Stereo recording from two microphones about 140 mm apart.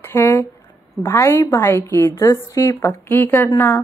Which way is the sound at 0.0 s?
15° left (ahead or behind).